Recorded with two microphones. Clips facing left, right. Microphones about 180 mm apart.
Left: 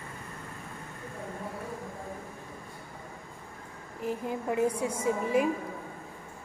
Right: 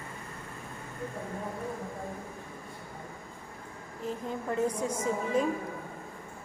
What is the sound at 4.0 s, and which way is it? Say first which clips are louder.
A woman's voice: left 3 dB; 15° left (ahead or behind).